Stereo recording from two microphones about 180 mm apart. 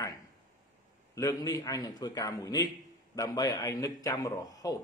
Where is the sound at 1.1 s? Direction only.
20° left (ahead or behind).